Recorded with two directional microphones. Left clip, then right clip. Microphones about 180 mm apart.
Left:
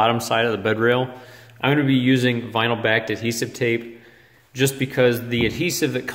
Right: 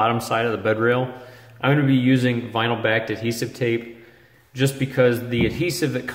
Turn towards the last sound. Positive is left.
turn(degrees=30)  # may be behind; listen again after turning